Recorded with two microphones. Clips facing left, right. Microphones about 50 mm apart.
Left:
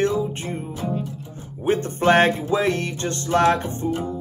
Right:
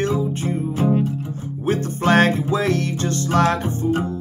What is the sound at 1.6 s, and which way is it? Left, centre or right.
Music, left.